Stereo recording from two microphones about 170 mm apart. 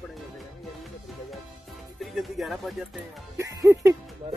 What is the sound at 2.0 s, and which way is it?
Speech, centre (ahead or behind).